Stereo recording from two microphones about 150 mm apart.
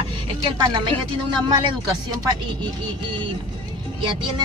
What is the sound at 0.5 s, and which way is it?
Speech, 30° right (ahead or behind).